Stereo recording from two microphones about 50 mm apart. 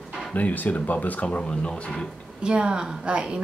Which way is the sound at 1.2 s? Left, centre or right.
Left.